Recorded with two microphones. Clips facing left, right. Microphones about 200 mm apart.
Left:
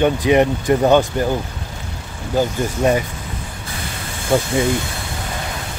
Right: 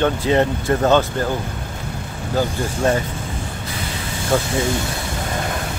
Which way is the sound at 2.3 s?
15° left (ahead or behind).